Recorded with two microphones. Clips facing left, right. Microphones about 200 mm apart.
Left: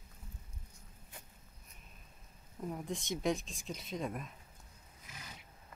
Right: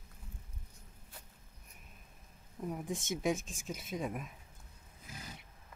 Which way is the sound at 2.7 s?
5° right (ahead or behind).